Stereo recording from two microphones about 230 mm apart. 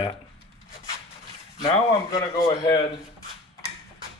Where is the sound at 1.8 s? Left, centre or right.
Left.